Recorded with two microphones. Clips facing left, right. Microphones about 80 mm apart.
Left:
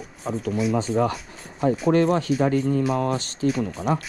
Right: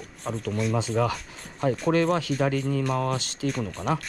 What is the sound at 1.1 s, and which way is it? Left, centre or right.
Speech, centre.